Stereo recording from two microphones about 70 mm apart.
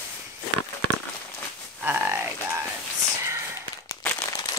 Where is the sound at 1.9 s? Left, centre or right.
Right.